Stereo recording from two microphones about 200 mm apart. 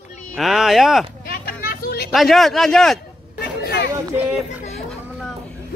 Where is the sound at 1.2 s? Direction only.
50° left (ahead or behind).